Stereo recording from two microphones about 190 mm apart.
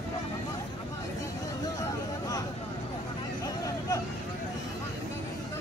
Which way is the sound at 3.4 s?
20° left (ahead or behind).